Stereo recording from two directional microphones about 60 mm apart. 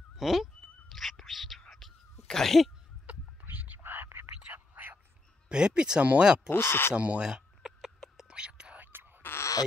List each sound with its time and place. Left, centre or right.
0.1 s goat: centre
0.8 s whispering: centre
2.2 s sneeze: centre
3.1 s whispering: right
5.5 s speech: centre
6.5 s speech: left
7.0 s a sound: centre
8.3 s whispering: centre
8.8 s a sound: right
9.2 s a sound: left